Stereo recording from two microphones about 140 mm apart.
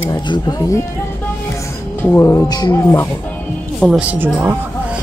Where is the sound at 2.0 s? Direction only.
20° left (ahead or behind).